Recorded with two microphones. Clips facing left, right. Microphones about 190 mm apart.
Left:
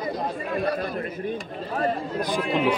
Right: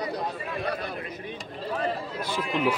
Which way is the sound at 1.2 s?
45° left (ahead or behind).